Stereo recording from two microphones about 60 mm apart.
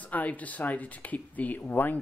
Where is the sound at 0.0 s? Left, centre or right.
Left.